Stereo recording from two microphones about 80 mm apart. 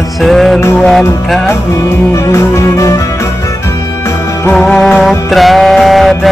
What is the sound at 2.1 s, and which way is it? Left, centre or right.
Music, left.